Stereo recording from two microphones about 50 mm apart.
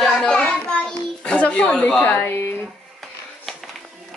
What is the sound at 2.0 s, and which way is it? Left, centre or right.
Speech, left.